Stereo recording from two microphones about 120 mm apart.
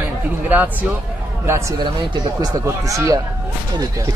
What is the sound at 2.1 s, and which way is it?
A man's voice, 35° right (ahead or behind).